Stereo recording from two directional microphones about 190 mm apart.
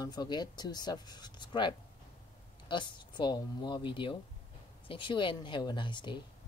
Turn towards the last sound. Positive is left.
turn(degrees=25)  # may be behind; listen again after turning